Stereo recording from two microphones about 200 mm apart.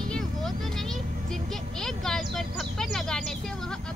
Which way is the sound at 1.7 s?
Centre (ahead or behind).